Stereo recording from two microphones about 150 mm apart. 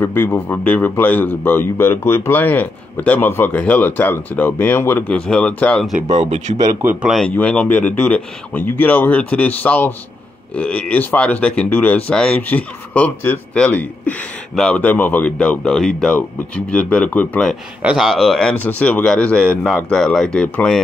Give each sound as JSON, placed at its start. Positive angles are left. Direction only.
{"t": 0.0, "sound": "speech", "side_deg": 15}
{"t": 5.9, "sound": "speech", "side_deg": -50}
{"t": 6.8, "sound": "a man's voice", "side_deg": -15}
{"t": 7.1, "sound": "speech", "side_deg": 0}